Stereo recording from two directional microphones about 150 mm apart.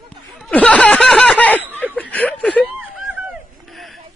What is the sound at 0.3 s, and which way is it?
Snicker, 5° left (ahead or behind).